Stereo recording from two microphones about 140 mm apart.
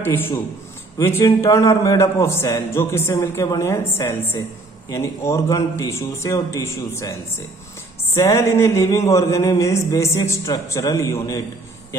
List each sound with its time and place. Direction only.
0.0 s a man's voice: 15° left (ahead or behind)